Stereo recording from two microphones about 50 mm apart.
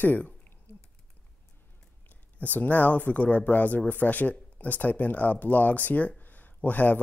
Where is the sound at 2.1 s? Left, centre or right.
Left.